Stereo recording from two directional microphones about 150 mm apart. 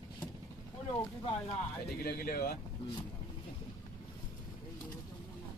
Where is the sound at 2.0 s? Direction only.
80° left.